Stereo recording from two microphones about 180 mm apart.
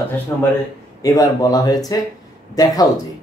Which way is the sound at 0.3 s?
15° left (ahead or behind).